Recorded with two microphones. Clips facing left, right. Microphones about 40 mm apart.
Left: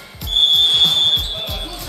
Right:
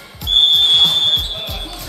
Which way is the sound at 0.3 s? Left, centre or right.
Right.